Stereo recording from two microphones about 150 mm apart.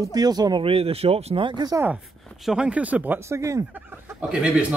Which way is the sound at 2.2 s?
5° right (ahead or behind).